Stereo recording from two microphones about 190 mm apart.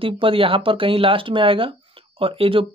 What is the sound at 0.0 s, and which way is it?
Speech, 30° right (ahead or behind).